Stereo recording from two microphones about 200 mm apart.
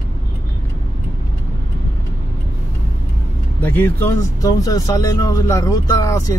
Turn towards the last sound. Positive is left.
turn(degrees=15)  # may be behind; listen again after turning